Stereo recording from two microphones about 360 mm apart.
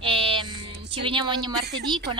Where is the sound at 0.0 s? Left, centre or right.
Centre.